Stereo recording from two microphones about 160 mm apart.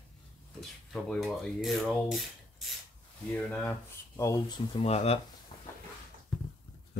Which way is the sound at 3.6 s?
15° left (ahead or behind).